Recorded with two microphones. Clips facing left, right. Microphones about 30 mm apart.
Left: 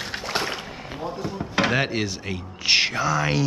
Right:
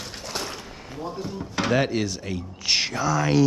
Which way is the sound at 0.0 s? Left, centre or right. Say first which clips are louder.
Left 5 dB; left.